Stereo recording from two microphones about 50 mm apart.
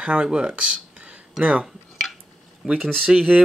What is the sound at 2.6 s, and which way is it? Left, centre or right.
Speech, centre.